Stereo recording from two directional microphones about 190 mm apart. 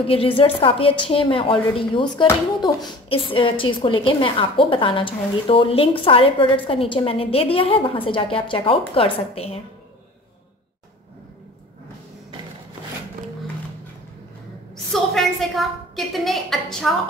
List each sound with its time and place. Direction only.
0.0 s a woman's voice: 30° left (ahead or behind)
14.9 s a woman's voice: centre (ahead or behind)